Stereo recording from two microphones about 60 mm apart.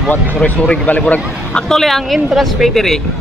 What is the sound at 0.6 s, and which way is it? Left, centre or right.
Speech, left.